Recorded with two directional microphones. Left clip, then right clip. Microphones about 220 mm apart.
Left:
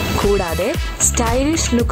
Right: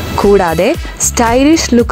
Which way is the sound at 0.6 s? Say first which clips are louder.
Right 7 dB; 25° right (ahead or behind).